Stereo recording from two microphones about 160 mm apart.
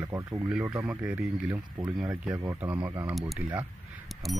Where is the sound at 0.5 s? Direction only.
5° right (ahead or behind).